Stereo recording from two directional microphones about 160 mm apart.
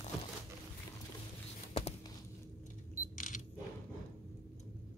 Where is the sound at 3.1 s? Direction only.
55° left (ahead or behind).